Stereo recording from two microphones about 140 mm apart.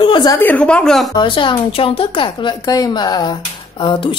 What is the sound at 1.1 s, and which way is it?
A woman's voice, 35° left (ahead or behind).